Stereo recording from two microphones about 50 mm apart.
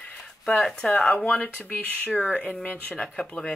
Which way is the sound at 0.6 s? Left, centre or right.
Centre.